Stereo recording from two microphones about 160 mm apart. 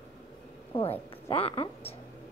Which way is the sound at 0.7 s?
35° left (ahead or behind).